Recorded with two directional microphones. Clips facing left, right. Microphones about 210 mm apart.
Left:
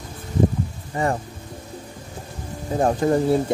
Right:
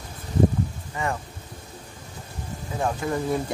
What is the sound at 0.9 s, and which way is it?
Speech, 35° left (ahead or behind).